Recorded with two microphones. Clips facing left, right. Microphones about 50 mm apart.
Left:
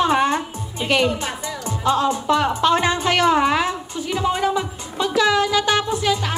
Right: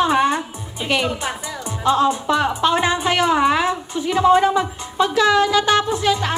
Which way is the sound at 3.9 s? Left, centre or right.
Right.